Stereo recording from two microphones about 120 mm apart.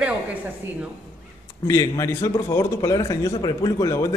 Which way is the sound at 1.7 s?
25° left (ahead or behind).